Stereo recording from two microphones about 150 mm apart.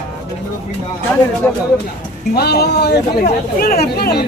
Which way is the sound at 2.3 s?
90° left.